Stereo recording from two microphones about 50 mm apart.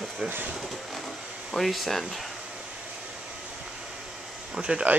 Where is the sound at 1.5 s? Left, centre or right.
Centre.